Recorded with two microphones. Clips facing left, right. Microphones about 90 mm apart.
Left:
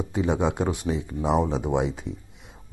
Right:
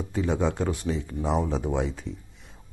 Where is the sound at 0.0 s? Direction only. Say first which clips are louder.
Left 2 dB; 20° left (ahead or behind).